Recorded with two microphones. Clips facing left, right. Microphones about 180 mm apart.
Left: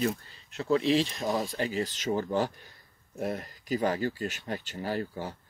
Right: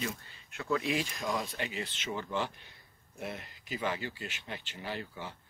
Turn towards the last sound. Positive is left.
turn(degrees=40)  # may be behind; listen again after turning